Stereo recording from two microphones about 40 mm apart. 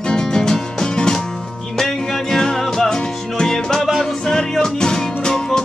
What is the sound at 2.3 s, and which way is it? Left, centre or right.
Music, centre.